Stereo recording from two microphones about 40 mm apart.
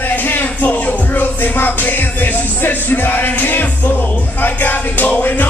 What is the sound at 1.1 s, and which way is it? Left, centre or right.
Music, left.